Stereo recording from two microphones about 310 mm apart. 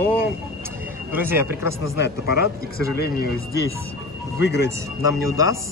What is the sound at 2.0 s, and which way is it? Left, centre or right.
Speech, left.